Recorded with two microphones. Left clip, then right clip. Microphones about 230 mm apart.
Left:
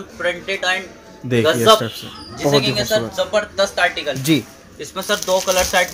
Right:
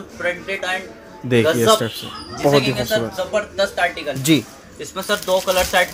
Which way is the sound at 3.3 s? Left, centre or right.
Left.